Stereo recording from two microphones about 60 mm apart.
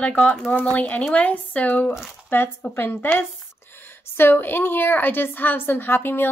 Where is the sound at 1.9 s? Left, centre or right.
Left.